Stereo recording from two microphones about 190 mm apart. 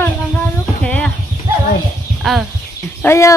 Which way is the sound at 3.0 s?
15° left (ahead or behind).